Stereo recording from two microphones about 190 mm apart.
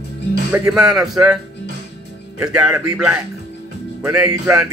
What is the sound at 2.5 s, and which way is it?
Speech, 5° right (ahead or behind).